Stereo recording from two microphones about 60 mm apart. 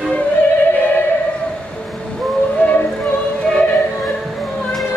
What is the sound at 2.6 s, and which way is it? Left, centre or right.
Music, left.